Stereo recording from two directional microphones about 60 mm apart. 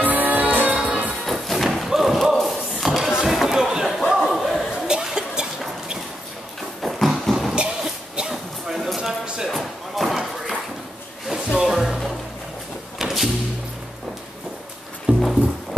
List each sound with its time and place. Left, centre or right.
0.0 s music: right
1.2 s music: centre
2.4 s a sound: centre
4.8 s cough: centre
6.8 s a sound: centre
7.5 s a sound: centre
9.5 s slam: centre
11.2 s music: centre
13.0 s music: centre
15.1 s music: right